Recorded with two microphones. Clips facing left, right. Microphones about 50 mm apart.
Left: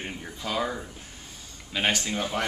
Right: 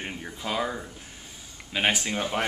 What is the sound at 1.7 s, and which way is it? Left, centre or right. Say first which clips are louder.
Speech: right 1 dB; centre.